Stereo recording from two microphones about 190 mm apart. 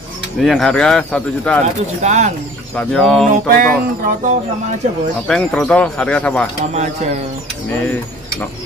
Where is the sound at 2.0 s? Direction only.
40° right (ahead or behind).